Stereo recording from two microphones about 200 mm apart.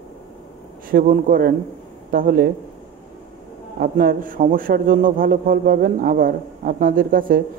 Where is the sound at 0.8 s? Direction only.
45° right (ahead or behind).